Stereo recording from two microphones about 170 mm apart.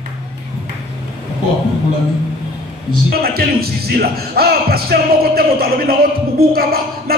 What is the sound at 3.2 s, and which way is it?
Speech, 65° right (ahead or behind).